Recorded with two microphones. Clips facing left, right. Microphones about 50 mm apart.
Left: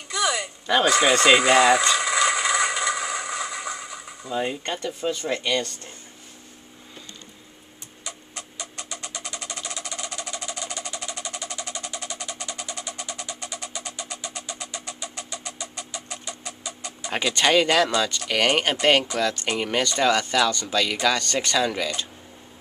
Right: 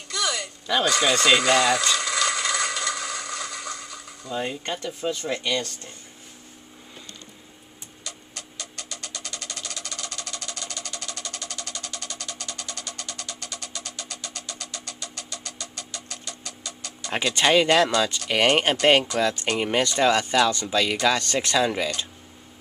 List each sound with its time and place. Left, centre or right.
0.1 s a sound: centre
8.0 s engine: centre
17.3 s speech: centre